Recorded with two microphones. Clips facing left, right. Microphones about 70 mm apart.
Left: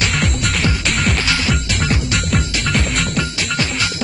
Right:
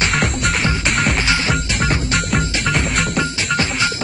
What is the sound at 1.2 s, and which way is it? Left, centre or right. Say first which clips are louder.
Music: right 1 dB; right.